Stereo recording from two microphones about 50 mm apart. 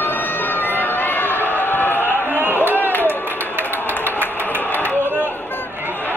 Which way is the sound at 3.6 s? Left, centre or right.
Right.